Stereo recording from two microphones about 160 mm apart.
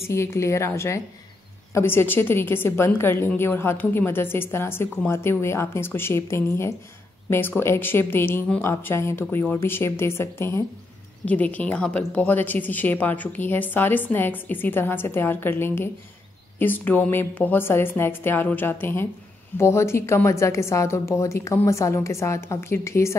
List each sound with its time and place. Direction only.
0.1 s a woman's voice: 15° left (ahead or behind)